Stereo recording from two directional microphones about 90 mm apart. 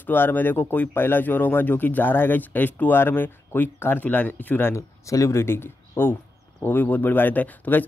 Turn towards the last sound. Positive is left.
turn(degrees=20)  # may be behind; listen again after turning